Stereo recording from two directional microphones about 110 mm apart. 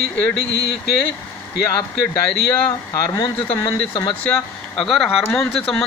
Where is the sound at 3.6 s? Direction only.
45° left (ahead or behind).